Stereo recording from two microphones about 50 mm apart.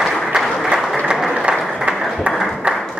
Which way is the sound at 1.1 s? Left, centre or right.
Centre.